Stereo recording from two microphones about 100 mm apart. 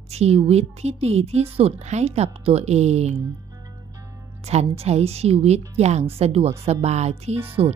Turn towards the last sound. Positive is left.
turn(degrees=-90)